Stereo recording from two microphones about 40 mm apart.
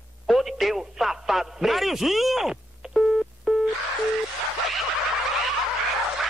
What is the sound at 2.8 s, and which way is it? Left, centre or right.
Telephone dialing, centre.